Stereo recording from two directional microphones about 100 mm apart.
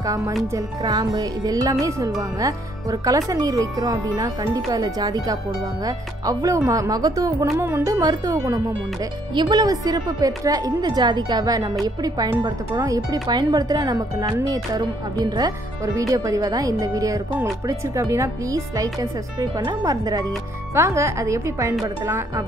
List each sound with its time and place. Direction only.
0.5 s speech: 35° right (ahead or behind)
7.5 s speech: 25° right (ahead or behind)
9.3 s a woman's voice: 45° right (ahead or behind)
20.7 s speech: 30° right (ahead or behind)